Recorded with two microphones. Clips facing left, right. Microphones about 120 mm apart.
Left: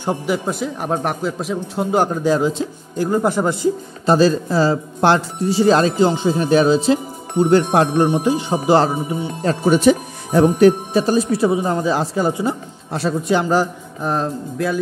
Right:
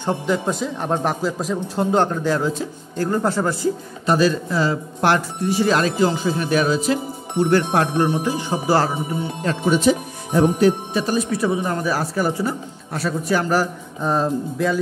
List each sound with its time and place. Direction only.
0.0 s speech: 10° left (ahead or behind)
2.0 s a man's voice: 15° left (ahead or behind)
4.1 s speech: 30° left (ahead or behind)
9.4 s speech: 35° left (ahead or behind)
9.8 s speech: 60° left (ahead or behind)
10.9 s speech: 35° left (ahead or behind); by 13.7 s 20° left (ahead or behind)
14.0 s speech: centre (ahead or behind)